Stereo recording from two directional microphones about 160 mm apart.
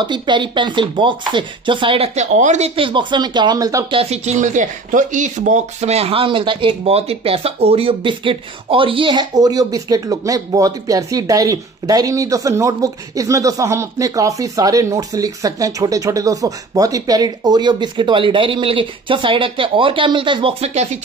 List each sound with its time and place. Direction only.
0.0 s speech: 30° right (ahead or behind)
3.9 s speech: 40° right (ahead or behind)